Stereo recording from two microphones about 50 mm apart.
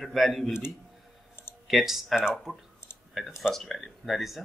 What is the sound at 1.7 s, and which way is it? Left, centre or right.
Speech, centre.